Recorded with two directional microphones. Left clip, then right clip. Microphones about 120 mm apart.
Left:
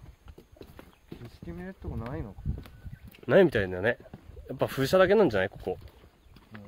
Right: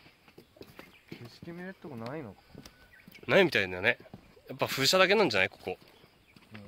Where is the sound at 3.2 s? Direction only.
90° left.